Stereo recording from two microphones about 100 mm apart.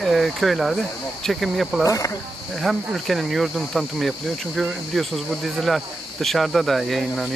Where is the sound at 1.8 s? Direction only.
30° left (ahead or behind).